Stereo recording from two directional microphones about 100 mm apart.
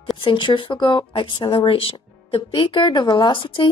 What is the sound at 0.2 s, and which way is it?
Speech, 55° left (ahead or behind).